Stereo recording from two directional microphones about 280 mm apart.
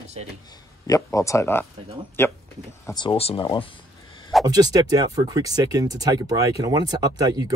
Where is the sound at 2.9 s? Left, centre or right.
Centre.